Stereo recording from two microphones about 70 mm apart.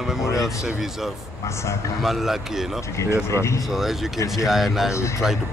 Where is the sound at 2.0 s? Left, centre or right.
Centre.